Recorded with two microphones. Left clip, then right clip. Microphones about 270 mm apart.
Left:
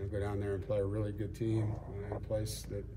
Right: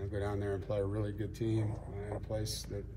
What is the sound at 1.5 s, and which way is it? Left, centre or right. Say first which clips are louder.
Speech: even; right.